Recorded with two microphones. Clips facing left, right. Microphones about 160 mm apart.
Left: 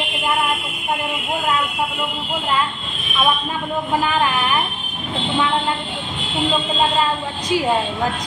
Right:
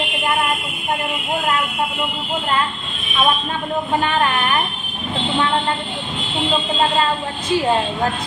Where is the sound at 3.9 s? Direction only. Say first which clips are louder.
Even; 5° left (ahead or behind).